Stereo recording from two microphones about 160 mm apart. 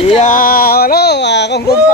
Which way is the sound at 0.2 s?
55° left (ahead or behind).